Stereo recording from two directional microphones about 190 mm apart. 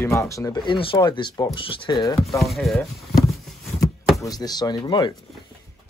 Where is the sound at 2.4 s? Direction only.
Centre (ahead or behind).